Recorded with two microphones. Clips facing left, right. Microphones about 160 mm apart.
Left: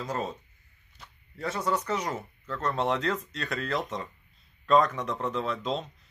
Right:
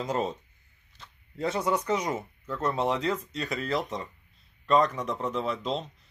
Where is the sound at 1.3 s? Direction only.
25° right (ahead or behind).